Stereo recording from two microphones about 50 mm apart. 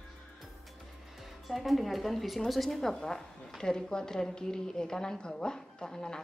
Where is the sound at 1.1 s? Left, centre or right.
Centre.